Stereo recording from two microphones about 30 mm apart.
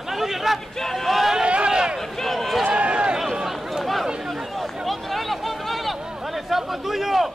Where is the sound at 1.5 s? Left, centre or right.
Right.